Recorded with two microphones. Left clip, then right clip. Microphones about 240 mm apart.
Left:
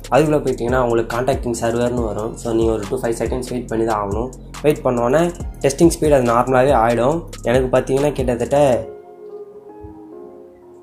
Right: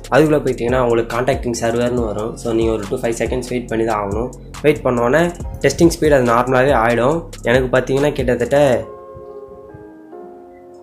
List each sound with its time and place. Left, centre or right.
0.1 s speech: centre